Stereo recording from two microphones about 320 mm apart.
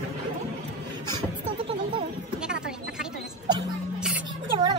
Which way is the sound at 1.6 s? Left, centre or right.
Centre.